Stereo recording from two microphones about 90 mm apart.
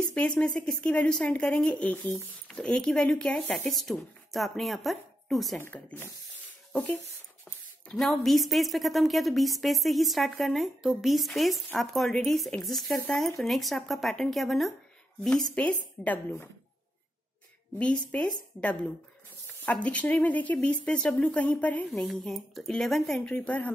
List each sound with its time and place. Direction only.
0.0 s a woman's voice: 10° left (ahead or behind)
5.6 s speech: 20° left (ahead or behind)
7.9 s a woman's voice: 5° left (ahead or behind)
15.5 s a woman's voice: 15° left (ahead or behind)
17.7 s a woman's voice: 15° left (ahead or behind)
21.9 s a woman's voice: 5° left (ahead or behind)